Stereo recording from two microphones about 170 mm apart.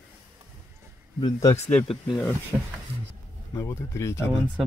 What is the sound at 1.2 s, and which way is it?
Speech, 20° left (ahead or behind).